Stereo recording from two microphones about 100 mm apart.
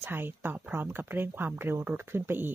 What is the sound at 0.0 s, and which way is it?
Speech, 20° right (ahead or behind).